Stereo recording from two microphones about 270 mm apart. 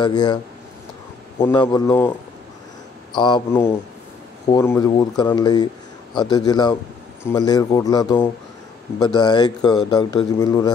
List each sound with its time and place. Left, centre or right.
0.0 s speech: centre
1.4 s speech: centre
3.2 s speech: centre